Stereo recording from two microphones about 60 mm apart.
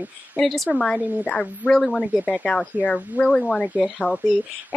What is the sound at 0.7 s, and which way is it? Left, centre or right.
Speech, centre.